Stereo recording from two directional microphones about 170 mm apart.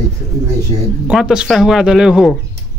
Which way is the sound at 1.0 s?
5° right (ahead or behind).